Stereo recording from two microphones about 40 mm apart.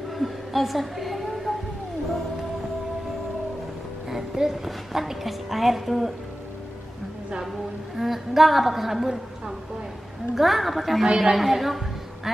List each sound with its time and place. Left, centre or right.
0.2 s a sound: centre
4.1 s a woman's voice: centre
7.9 s a woman's voice: centre
10.3 s a woman's voice: centre
11.1 s a woman's voice: centre
11.3 s a woman's voice: centre